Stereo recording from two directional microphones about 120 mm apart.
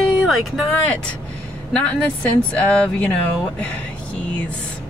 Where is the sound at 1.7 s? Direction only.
10° left (ahead or behind).